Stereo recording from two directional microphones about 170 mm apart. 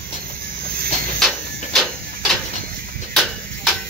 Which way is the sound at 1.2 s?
Centre (ahead or behind).